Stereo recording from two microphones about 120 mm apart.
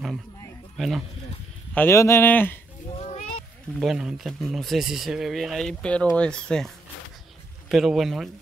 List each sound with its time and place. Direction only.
0.7 s speech: centre (ahead or behind)
1.7 s speech: 15° left (ahead or behind)
2.9 s a sound: 60° left (ahead or behind)
3.8 s speech: 5° right (ahead or behind)
7.7 s speech: centre (ahead or behind)